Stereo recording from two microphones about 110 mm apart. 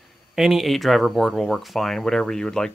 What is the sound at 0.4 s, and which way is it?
Speech, centre (ahead or behind).